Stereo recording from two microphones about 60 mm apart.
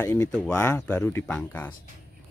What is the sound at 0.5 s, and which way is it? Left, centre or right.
Speech, left.